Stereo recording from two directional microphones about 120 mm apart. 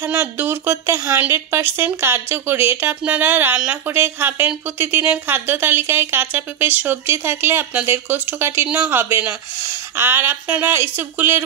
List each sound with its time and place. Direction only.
0.0 s a woman's voice: 15° right (ahead or behind)